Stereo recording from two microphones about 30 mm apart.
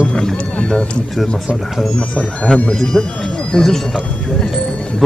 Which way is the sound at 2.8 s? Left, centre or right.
Left.